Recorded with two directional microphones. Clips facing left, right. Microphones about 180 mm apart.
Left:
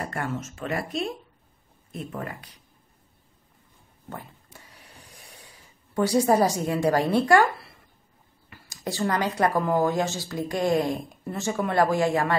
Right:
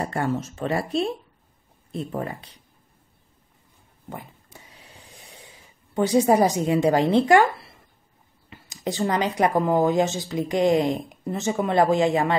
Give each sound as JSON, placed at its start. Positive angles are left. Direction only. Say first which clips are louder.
{"t": 0.0, "sound": "speech", "louder": "right 5 dB", "side_deg": -30}
{"t": 5.9, "sound": "speech", "louder": "right 2 dB", "side_deg": -20}
{"t": 8.5, "sound": "speech", "louder": "right 4 dB", "side_deg": -20}